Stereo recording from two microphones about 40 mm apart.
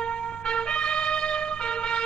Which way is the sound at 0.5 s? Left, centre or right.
Left.